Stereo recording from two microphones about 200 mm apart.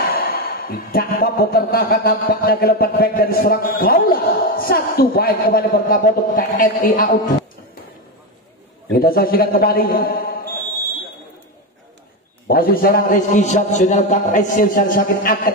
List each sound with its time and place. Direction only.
0.1 s a man's voice: 45° left (ahead or behind)
8.9 s a man's voice: 50° left (ahead or behind)
12.4 s a man's voice: 45° left (ahead or behind)